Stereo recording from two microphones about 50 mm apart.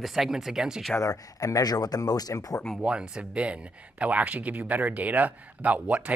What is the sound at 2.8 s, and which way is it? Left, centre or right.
Speech, centre.